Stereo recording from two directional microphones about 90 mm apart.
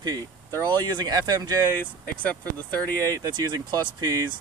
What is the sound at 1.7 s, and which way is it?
Speech, 20° left (ahead or behind).